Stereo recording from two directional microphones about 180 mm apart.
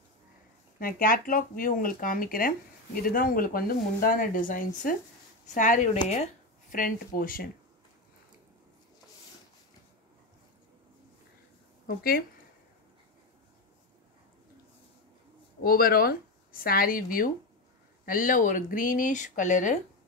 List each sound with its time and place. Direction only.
0.7 s speech: 55° left (ahead or behind)
15.6 s speech: 55° left (ahead or behind)